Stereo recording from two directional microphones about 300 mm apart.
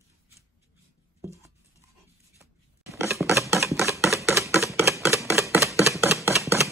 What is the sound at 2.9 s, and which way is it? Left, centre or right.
Typewriter, centre.